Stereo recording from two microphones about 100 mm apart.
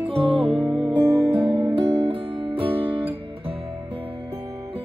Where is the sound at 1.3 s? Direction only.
65° right (ahead or behind).